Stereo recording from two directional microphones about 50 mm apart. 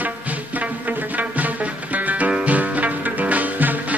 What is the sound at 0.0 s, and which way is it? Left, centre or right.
Music, right.